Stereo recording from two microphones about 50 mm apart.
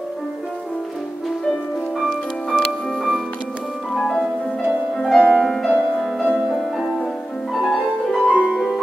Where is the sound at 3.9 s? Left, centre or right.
Centre.